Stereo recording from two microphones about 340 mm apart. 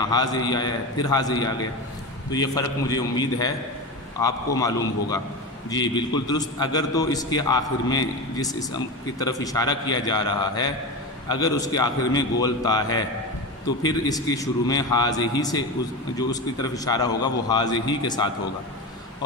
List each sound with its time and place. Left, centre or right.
0.0 s a man's voice: centre